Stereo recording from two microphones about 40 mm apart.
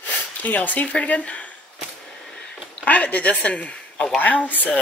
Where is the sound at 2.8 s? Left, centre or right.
Left.